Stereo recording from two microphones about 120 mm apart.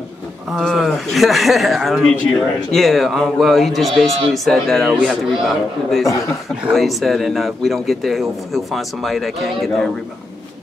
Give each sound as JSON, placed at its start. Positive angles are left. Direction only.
{"t": 0.5, "sound": "speech", "side_deg": 0}
{"t": 6.0, "sound": "a man's voice", "side_deg": 25}
{"t": 6.7, "sound": "speech", "side_deg": 0}